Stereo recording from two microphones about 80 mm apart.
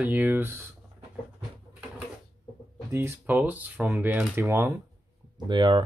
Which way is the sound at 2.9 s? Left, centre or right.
Right.